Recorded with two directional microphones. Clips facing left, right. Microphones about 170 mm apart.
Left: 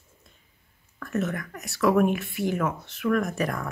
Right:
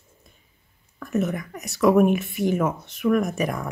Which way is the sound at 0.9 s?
15° right (ahead or behind).